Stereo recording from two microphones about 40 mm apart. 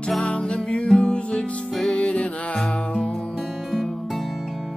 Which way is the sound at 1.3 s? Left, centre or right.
Centre.